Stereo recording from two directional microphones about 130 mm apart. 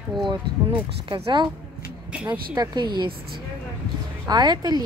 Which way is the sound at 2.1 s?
10° right (ahead or behind).